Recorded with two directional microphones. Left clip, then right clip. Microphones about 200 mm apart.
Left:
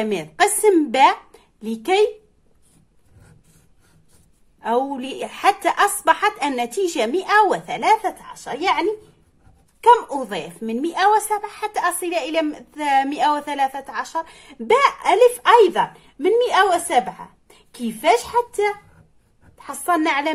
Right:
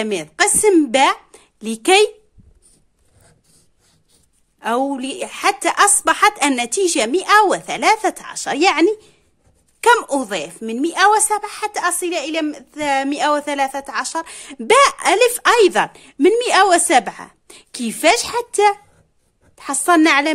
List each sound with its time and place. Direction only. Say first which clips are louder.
0.0 s a woman's voice: right 1 dB; 30° right (ahead or behind)
4.6 s a woman's voice: right 2 dB; 40° right (ahead or behind); by 8.8 s 60° right (ahead or behind)
9.8 s a woman's voice: even; 45° right (ahead or behind)